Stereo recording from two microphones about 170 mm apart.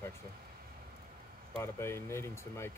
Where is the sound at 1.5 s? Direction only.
15° left (ahead or behind).